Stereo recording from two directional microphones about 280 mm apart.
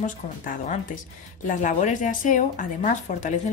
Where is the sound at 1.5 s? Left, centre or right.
Left.